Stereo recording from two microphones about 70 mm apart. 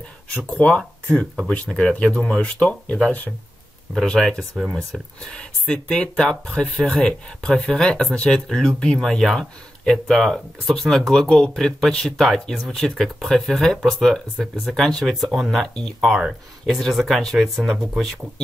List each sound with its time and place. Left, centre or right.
0.5 s speech: centre
3.9 s speech: centre
15.5 s speech: centre
16.0 s speech: centre